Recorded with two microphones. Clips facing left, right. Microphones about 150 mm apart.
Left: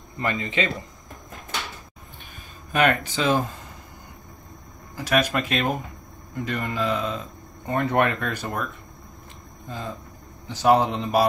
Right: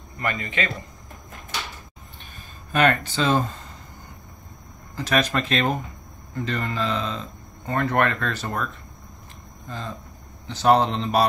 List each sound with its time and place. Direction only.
0.2 s speech: 30° left (ahead or behind)
2.7 s speech: 10° left (ahead or behind)
4.9 s speech: 10° left (ahead or behind)
10.5 s speech: 10° left (ahead or behind)